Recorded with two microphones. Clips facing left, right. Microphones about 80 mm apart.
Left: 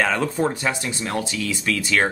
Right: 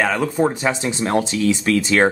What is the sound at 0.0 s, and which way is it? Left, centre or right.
Speech, centre.